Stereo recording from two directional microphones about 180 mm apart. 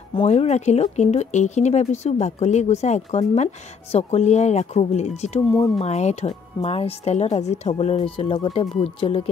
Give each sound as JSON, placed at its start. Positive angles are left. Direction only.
{"t": 0.1, "sound": "speech", "side_deg": 35}